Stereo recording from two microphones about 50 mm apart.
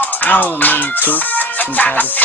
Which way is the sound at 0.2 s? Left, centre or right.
Left.